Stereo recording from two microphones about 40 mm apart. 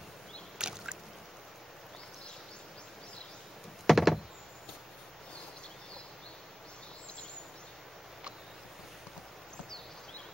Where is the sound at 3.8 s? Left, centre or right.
Centre.